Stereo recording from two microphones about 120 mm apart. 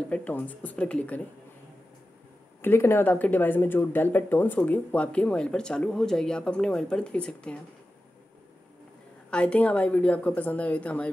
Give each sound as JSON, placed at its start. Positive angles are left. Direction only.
{"t": 0.1, "sound": "speech", "side_deg": 15}
{"t": 2.6, "sound": "speech", "side_deg": 20}
{"t": 9.3, "sound": "speech", "side_deg": 10}